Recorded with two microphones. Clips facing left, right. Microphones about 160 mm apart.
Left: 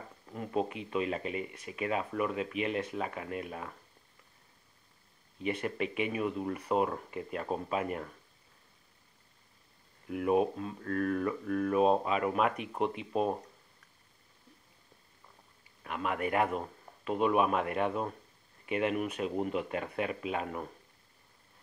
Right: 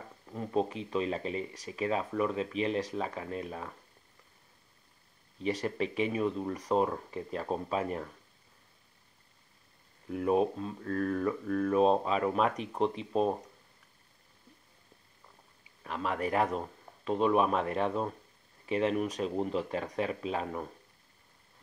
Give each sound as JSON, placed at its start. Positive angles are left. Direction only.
{"t": 0.3, "sound": "speech", "side_deg": 5}
{"t": 1.5, "sound": "speech", "side_deg": -35}
{"t": 1.9, "sound": "speech", "side_deg": 10}
{"t": 2.5, "sound": "speech", "side_deg": -35}
{"t": 2.9, "sound": "speech", "side_deg": 5}
{"t": 5.4, "sound": "speech", "side_deg": -35}
{"t": 6.0, "sound": "speech", "side_deg": 5}
{"t": 10.0, "sound": "speech", "side_deg": 10}
{"t": 15.8, "sound": "speech", "side_deg": 5}
{"t": 19.5, "sound": "speech", "side_deg": -30}
{"t": 20.1, "sound": "speech", "side_deg": 5}